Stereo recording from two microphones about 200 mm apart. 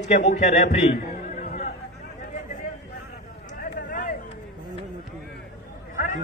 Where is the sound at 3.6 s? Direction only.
40° left (ahead or behind).